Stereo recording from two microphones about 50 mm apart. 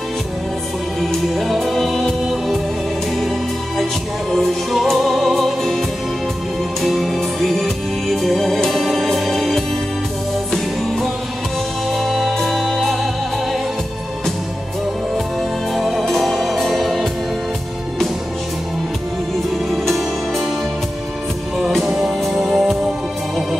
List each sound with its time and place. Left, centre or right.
1.3 s music: centre
11.9 s music: centre
15.7 s music: centre
19.8 s music: centre
21.5 s music: centre